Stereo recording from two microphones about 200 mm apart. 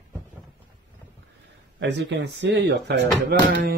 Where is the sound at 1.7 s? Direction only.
60° right (ahead or behind).